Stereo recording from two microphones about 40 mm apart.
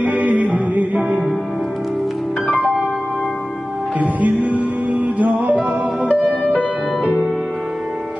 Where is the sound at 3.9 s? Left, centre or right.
Right.